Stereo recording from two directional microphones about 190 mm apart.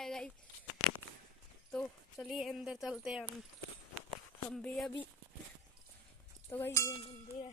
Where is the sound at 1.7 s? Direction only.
Centre (ahead or behind).